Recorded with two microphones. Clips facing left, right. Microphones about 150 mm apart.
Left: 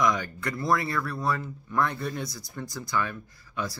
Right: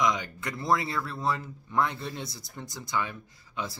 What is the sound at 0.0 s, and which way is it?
Speech, 20° right (ahead or behind).